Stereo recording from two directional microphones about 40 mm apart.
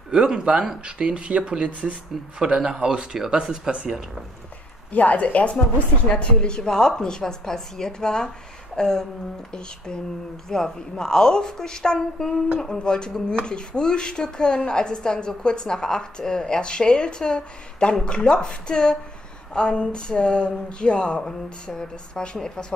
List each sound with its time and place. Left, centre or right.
0.1 s speech: centre
4.9 s a woman's voice: left; by 8.3 s centre
8.7 s a sound: centre
9.5 s a woman's voice: centre
12.7 s a woman's voice: left